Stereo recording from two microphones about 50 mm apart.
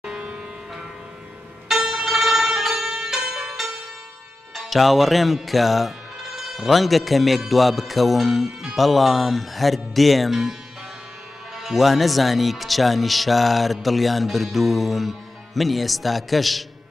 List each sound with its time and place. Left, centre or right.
0.0 s music: right
1.7 s bell: centre
4.6 s speech: centre
11.5 s speech: centre